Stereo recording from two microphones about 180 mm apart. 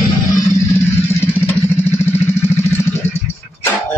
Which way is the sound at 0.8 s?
15° left (ahead or behind).